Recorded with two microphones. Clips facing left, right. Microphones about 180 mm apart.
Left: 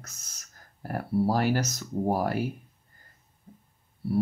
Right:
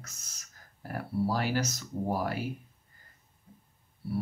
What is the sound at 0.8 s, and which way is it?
Speech, 45° left (ahead or behind).